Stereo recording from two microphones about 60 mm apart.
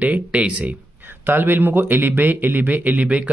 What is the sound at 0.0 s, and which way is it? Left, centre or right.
Speech, right.